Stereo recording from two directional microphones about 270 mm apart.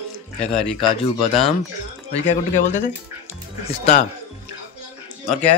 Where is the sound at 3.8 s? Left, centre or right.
Left.